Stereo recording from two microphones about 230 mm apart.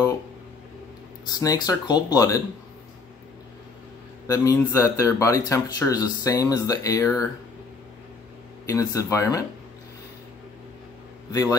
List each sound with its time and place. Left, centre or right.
1.2 s speech: centre
4.3 s speech: centre
8.6 s speech: centre